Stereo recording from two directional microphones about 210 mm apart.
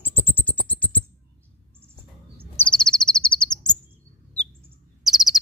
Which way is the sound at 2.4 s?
5° left (ahead or behind).